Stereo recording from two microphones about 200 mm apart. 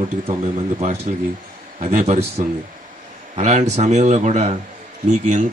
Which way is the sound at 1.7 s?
35° right (ahead or behind).